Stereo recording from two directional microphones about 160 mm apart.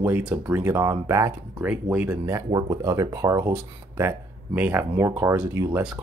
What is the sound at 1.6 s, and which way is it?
Speech, 10° right (ahead or behind).